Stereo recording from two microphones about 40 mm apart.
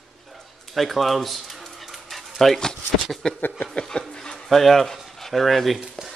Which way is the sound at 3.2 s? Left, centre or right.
Centre.